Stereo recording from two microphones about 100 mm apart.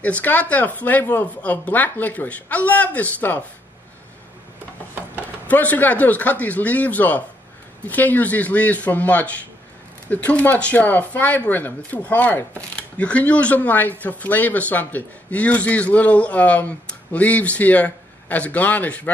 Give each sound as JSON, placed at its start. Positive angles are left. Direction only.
{"t": 0.0, "sound": "speech", "side_deg": 15}
{"t": 5.5, "sound": "speech", "side_deg": 15}